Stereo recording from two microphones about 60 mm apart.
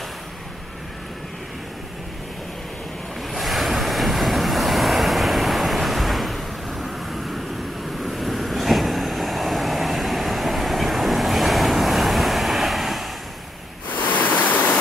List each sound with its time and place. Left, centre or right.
3.3 s waves: centre
8.0 s vehicle: centre
14.0 s pink noise: left